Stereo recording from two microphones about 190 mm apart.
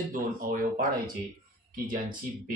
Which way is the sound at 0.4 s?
45° right (ahead or behind).